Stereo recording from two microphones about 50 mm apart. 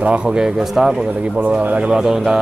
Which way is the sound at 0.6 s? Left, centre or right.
Centre.